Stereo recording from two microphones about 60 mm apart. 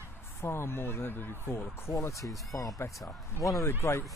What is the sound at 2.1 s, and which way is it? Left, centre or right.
Speech, centre.